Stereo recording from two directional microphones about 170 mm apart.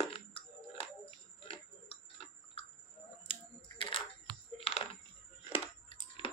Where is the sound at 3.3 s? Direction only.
30° left (ahead or behind).